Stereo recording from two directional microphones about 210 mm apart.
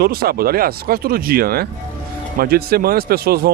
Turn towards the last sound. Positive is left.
turn(degrees=-45)  # may be behind; listen again after turning